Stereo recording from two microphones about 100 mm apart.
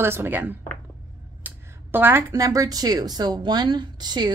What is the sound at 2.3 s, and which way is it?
A woman's voice, 35° right (ahead or behind).